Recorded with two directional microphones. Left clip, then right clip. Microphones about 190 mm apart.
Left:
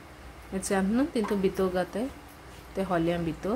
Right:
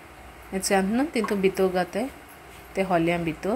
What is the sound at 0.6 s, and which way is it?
A woman's voice, 10° right (ahead or behind).